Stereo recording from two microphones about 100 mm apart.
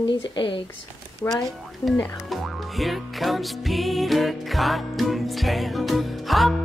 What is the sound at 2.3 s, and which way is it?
Music, centre (ahead or behind).